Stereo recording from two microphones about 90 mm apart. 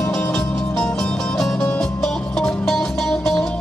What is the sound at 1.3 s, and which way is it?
Music, 10° left (ahead or behind).